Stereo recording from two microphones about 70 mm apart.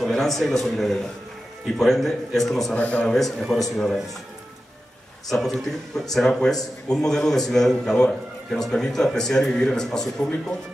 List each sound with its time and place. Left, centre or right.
0.0 s a man's voice: centre
2.8 s speech: centre
3.2 s a man's voice: centre
5.3 s speech: centre